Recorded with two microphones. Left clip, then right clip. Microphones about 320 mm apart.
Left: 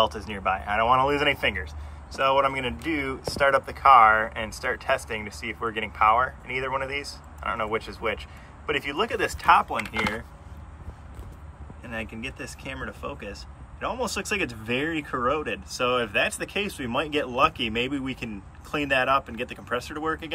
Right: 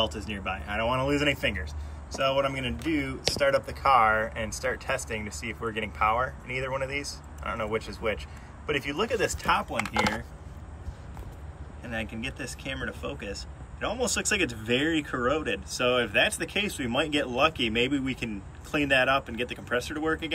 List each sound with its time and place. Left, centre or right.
0.3 s speech: centre
11.8 s speech: centre